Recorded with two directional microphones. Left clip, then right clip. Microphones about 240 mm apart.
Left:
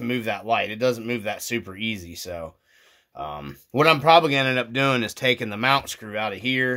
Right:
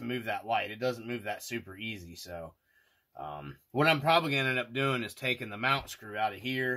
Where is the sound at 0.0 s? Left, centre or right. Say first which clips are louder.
Left 8 dB; left.